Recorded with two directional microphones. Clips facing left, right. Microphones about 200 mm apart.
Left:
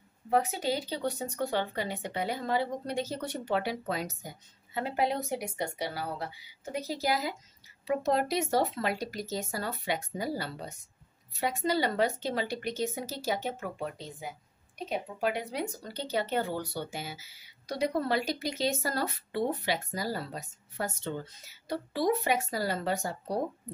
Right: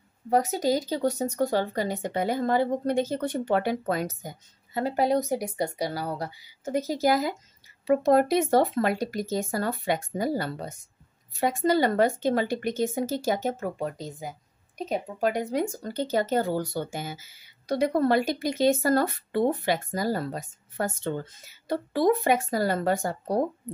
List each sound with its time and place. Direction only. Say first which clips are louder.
0.3 s speech: right 5 dB; 40° right (ahead or behind)